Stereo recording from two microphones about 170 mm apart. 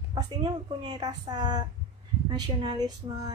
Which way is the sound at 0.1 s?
25° right (ahead or behind).